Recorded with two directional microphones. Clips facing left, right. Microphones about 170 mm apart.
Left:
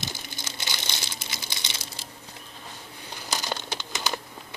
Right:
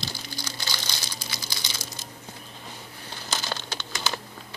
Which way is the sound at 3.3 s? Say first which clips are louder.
Left 1 dB; 15° left (ahead or behind).